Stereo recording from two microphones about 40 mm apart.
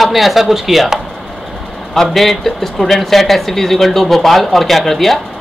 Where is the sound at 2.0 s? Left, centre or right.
Centre.